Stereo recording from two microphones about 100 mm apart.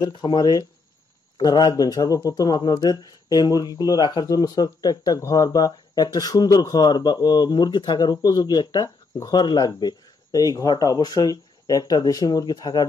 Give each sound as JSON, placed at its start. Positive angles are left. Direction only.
{"t": 0.1, "sound": "a man's voice", "side_deg": 45}